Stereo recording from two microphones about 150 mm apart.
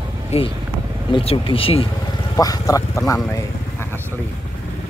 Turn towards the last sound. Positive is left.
turn(degrees=15)  # may be behind; listen again after turning